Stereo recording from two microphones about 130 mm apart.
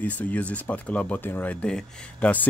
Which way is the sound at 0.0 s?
10° left (ahead or behind).